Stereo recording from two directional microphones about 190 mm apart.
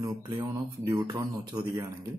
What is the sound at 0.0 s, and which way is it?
Speech, 20° right (ahead or behind).